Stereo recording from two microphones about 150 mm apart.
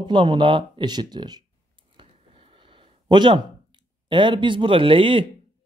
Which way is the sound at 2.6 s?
35° right (ahead or behind).